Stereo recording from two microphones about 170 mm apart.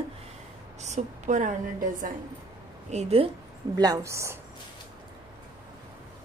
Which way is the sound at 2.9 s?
40° right (ahead or behind).